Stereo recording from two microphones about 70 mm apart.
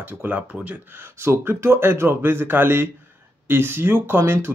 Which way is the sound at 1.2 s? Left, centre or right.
Right.